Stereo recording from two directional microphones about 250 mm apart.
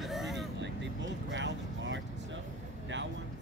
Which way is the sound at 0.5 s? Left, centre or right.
Right.